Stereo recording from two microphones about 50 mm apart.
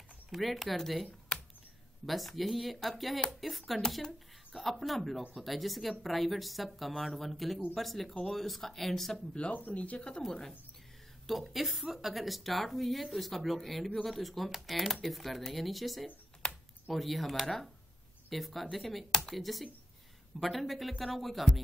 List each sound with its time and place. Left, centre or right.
0.3 s speech: centre
1.3 s a sound: centre
2.0 s speech: centre
9.5 s speech: left
10.2 s speech: centre
16.4 s a sound: centre
16.9 s speech: centre